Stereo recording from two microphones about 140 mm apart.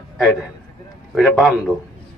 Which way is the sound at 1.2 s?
Centre (ahead or behind).